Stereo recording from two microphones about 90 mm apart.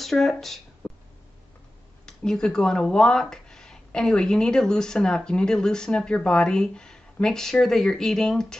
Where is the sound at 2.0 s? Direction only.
5° left (ahead or behind).